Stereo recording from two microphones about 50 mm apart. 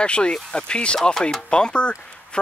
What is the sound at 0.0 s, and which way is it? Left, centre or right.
Speech, centre.